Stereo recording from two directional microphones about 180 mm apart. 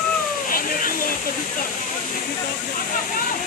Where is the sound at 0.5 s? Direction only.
50° left (ahead or behind).